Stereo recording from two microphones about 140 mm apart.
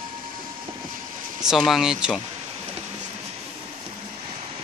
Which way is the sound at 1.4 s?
Centre (ahead or behind).